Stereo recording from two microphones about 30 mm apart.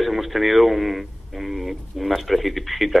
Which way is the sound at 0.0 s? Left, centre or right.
Centre.